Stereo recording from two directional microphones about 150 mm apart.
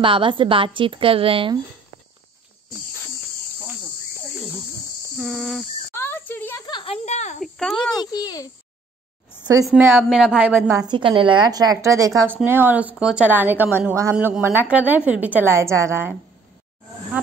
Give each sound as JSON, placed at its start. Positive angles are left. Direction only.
{"t": 0.0, "sound": "a woman's voice", "side_deg": -35}
{"t": 5.2, "sound": "speech", "side_deg": 0}
{"t": 5.9, "sound": "a sound", "side_deg": 15}
{"t": 6.6, "sound": "speech", "side_deg": 35}
{"t": 7.4, "sound": "speech", "side_deg": 0}
{"t": 8.0, "sound": "a child's voice", "side_deg": 25}
{"t": 9.4, "sound": "speech", "side_deg": -25}
{"t": 9.8, "sound": "a woman's voice", "side_deg": -15}
{"t": 10.8, "sound": "a woman's voice", "side_deg": -30}
{"t": 14.1, "sound": "a woman's voice", "side_deg": -5}